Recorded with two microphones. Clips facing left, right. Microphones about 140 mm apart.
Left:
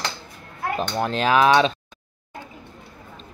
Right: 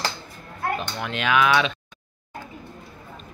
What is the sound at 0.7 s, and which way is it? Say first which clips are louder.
A man's voice: left 6 dB; 35° left (ahead or behind).